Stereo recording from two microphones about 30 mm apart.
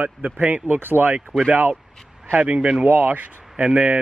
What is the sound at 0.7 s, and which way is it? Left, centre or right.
Speech, right.